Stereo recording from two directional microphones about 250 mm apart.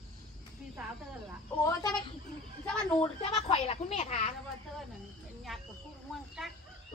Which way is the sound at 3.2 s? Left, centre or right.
Left.